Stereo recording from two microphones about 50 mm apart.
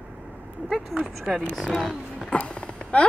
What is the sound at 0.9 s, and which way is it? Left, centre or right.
Speech, centre.